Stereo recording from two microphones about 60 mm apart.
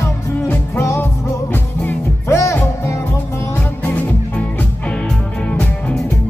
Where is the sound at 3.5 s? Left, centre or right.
Left.